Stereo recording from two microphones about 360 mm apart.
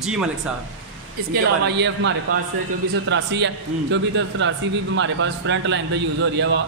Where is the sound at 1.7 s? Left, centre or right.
Right.